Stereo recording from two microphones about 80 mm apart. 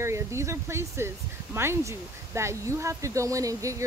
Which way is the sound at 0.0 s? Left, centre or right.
Right.